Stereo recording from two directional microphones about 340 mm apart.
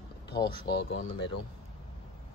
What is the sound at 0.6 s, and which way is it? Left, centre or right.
Speech, left.